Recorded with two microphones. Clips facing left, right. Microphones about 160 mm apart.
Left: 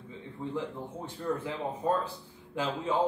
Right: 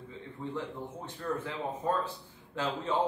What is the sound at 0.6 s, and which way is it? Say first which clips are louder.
A man's voice: left 4 dB; 15° left (ahead or behind).